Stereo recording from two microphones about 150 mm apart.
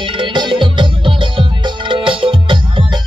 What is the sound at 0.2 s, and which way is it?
Music, 30° right (ahead or behind).